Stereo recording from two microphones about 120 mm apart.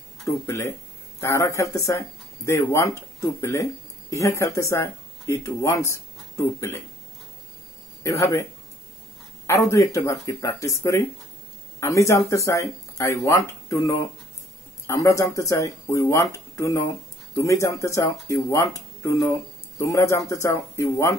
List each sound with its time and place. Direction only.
1.2 s speech: 25° left (ahead or behind)
8.0 s speech: 25° left (ahead or behind)
9.5 s speech: 25° left (ahead or behind)